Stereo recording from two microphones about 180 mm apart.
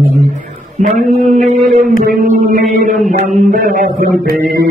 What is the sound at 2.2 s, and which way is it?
Speech, 50° right (ahead or behind).